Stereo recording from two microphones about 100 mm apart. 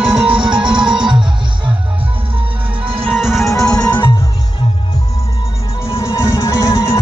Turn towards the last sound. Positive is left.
turn(degrees=30)  # may be behind; listen again after turning